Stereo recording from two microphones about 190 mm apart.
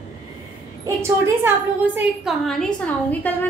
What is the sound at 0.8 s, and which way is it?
Speech, 15° right (ahead or behind).